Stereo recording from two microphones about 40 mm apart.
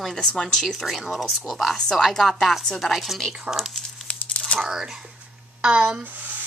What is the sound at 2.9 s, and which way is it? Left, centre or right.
Speech, centre.